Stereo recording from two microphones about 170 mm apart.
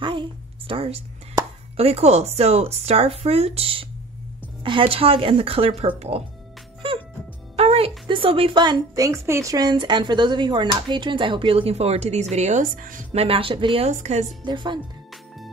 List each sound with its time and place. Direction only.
0.0 s a sound: 30° right (ahead or behind)
1.8 s speech: 35° right (ahead or behind)
7.5 s a woman's voice: 35° right (ahead or behind)
13.2 s speech: 30° right (ahead or behind)
14.4 s a woman's voice: 25° right (ahead or behind)